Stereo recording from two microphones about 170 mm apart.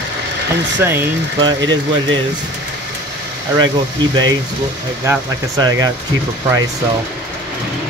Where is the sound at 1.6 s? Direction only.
90° right.